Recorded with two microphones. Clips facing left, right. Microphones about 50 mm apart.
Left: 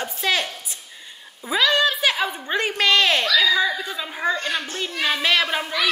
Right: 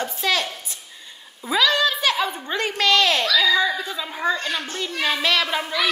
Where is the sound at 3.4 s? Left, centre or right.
Centre.